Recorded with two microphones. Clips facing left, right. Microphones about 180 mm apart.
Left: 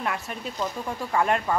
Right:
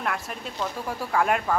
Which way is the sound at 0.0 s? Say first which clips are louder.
Even; centre (ahead or behind).